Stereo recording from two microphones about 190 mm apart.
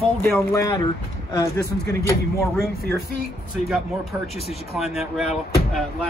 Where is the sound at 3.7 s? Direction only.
Centre (ahead or behind).